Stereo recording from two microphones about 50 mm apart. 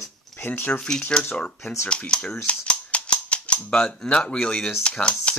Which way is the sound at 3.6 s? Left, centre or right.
Left.